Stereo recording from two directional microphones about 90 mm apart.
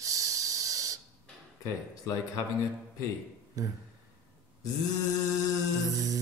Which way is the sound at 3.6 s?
40° right (ahead or behind).